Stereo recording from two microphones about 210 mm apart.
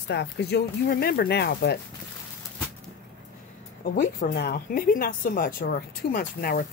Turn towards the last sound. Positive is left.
turn(degrees=45)  # may be behind; listen again after turning